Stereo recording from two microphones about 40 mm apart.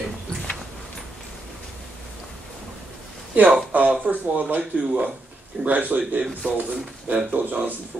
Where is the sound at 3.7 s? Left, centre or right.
Right.